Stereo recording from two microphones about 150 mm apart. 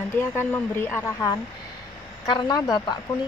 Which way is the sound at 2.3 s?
25° left (ahead or behind).